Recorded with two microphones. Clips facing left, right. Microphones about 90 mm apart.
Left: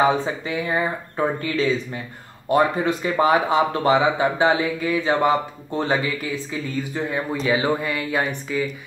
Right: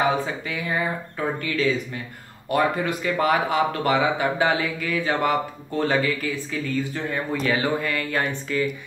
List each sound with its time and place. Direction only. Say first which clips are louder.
0.5 s speech: left 4 dB; 25° left (ahead or behind)